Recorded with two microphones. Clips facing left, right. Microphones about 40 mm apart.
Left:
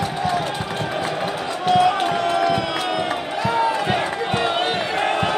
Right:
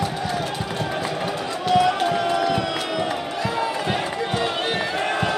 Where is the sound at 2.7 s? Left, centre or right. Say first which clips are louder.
Left 2 dB; centre.